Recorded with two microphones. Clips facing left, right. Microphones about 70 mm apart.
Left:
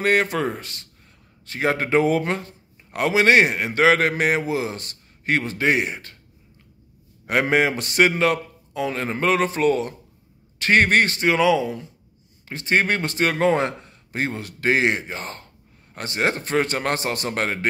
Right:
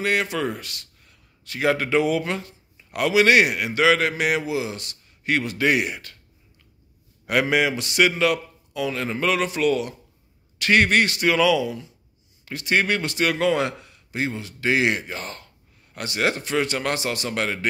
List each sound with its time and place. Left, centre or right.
0.0 s a man's voice: left
7.2 s a man's voice: left